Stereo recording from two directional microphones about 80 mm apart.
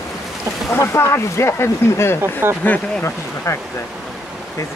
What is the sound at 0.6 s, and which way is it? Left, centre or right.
Speech, left.